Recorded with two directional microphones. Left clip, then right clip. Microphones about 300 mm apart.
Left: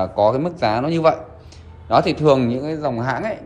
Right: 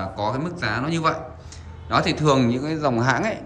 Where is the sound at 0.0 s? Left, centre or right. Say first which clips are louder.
Left 9 dB; centre.